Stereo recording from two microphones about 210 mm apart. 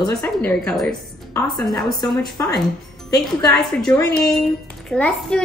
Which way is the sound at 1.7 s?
15° left (ahead or behind).